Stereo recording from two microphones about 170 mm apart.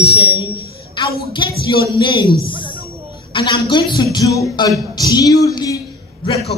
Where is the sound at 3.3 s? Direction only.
30° left (ahead or behind).